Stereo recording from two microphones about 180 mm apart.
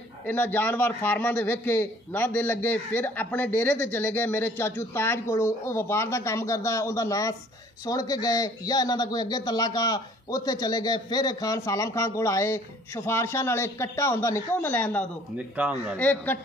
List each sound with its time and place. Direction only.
0.3 s a man's voice: 10° left (ahead or behind)
15.3 s speech: 5° right (ahead or behind)
16.0 s a man's voice: 10° left (ahead or behind)